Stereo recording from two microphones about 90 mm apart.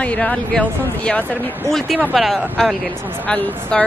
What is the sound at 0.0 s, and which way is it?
Speech, 15° left (ahead or behind).